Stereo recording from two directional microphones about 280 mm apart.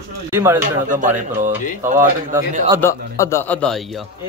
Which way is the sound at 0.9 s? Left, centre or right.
Right.